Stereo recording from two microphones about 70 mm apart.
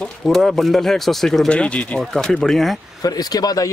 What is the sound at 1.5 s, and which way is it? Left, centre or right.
Speech, centre.